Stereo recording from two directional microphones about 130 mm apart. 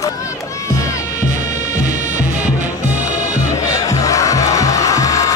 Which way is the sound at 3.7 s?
25° left (ahead or behind).